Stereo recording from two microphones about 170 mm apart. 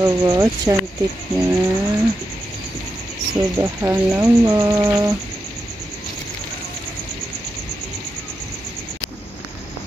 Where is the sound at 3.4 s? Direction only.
15° right (ahead or behind).